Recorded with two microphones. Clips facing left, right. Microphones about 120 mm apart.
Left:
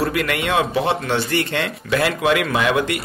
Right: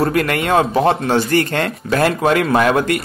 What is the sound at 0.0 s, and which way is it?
Speech, 45° right (ahead or behind).